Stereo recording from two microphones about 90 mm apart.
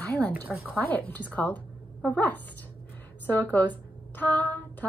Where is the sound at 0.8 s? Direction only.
20° left (ahead or behind).